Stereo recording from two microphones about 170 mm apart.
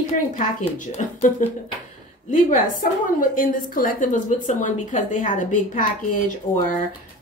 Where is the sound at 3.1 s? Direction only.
55° left (ahead or behind).